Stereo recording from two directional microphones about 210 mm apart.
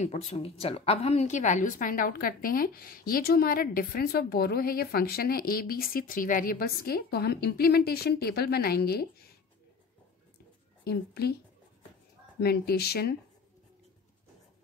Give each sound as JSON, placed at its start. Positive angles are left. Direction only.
{"t": 0.0, "sound": "a woman's voice", "side_deg": 30}
{"t": 10.8, "sound": "a woman's voice", "side_deg": 50}
{"t": 12.4, "sound": "a woman's voice", "side_deg": 50}